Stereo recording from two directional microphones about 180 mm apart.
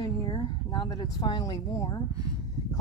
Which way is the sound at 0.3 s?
25° left (ahead or behind).